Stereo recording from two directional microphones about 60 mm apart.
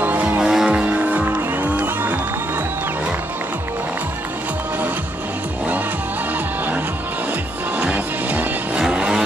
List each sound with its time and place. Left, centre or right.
0.0 s music: right
0.4 s music: centre
0.8 s music: right
7.8 s music: right
8.7 s vehicle: centre